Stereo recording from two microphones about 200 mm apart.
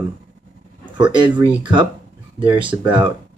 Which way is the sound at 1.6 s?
25° right (ahead or behind).